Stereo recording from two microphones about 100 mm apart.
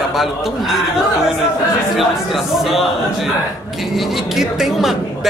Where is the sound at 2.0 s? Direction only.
Centre (ahead or behind).